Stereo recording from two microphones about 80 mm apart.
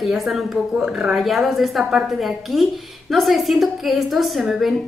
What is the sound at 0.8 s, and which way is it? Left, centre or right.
Speech, centre.